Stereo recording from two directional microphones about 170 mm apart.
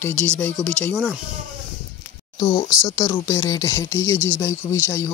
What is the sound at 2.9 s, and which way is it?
Speech, 20° left (ahead or behind).